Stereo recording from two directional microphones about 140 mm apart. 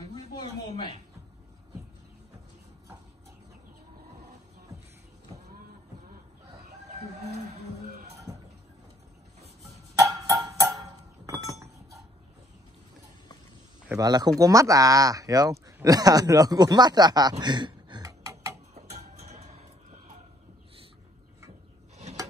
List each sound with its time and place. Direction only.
0.1 s a sound: 35° left (ahead or behind)
9.9 s chink: 25° right (ahead or behind)
13.9 s speech: 30° right (ahead or behind)
19.2 s music: 50° right (ahead or behind)